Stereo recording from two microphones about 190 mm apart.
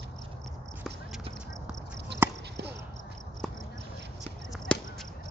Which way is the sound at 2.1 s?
65° right (ahead or behind).